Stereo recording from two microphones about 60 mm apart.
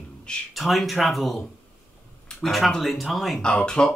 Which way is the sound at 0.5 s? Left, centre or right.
Centre.